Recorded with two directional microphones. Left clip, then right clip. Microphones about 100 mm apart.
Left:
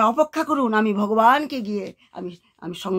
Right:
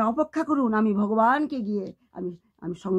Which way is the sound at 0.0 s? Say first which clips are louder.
Left 6 dB; 15° left (ahead or behind).